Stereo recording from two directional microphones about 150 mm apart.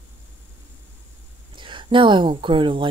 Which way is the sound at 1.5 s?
35° right (ahead or behind).